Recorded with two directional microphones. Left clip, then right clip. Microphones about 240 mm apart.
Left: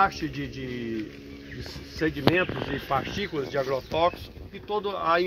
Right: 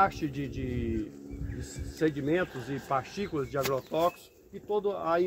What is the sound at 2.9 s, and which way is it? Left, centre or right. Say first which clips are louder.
Speech: left 2 dB; right.